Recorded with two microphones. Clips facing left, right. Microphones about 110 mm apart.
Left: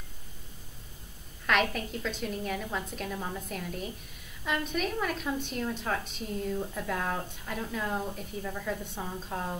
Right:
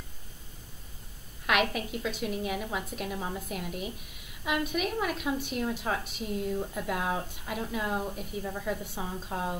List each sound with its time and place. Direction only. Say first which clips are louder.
1.4 s a woman's voice: even; 10° right (ahead or behind)
8.4 s a woman's voice: right 1 dB; 20° right (ahead or behind)
8.8 s a woman's voice: right 1 dB; 5° right (ahead or behind)